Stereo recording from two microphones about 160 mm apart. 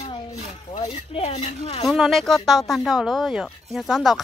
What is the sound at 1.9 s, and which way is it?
Speech, centre (ahead or behind).